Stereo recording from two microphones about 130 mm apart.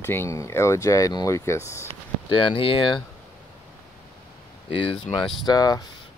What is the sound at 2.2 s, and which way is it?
Speech, 40° left (ahead or behind).